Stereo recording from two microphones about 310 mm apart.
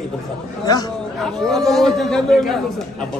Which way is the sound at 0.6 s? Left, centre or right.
Centre.